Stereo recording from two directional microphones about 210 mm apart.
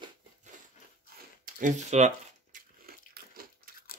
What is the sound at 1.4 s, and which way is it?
Crumpling, 40° right (ahead or behind).